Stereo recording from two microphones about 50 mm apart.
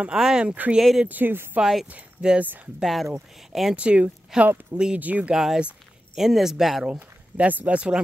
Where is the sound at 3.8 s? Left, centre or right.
Right.